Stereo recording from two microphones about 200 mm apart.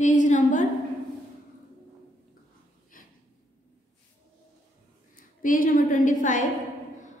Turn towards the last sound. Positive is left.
turn(degrees=40)  # may be behind; listen again after turning